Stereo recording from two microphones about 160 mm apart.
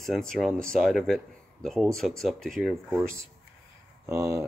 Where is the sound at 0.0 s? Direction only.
Centre (ahead or behind).